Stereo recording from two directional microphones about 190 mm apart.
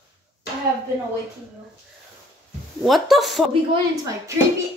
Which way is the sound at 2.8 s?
Centre (ahead or behind).